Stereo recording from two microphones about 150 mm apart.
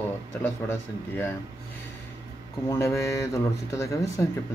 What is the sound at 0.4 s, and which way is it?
Speech, 15° left (ahead or behind).